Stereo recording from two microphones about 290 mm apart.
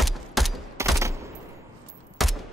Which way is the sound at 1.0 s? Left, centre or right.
Centre.